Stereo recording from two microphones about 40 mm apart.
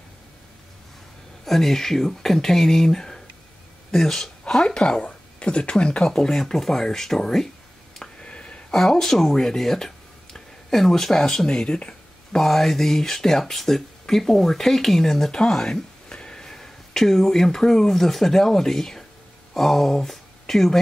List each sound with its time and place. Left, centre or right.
1.4 s speech: centre
4.6 s speech: left
8.0 s a sound: left
8.7 s speech: centre
12.4 s speech: centre